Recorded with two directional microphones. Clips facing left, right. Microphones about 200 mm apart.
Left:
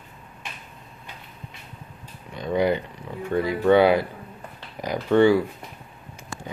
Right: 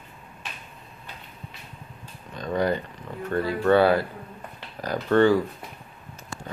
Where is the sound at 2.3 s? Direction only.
10° left (ahead or behind).